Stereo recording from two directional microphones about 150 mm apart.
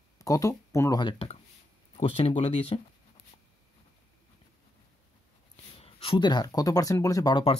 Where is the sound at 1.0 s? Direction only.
35° left (ahead or behind).